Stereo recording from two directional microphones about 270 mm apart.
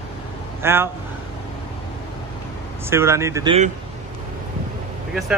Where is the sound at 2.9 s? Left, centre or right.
Centre.